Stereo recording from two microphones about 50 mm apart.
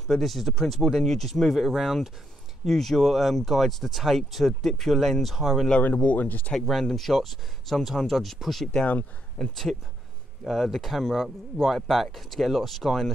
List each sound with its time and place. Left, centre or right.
0.0 s speech: centre
5.9 s speech: left
6.6 s speech: centre